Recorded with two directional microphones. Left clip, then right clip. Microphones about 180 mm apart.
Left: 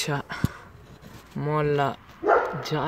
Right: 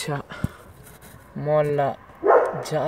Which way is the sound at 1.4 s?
35° left (ahead or behind).